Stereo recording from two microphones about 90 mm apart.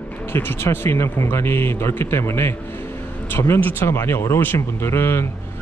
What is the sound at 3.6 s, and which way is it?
Speech, 30° left (ahead or behind).